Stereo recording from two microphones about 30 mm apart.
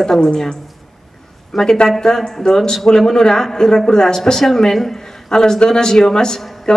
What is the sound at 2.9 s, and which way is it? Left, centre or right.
Speech, centre.